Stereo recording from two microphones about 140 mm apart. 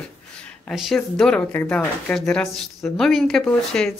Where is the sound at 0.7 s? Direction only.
Centre (ahead or behind).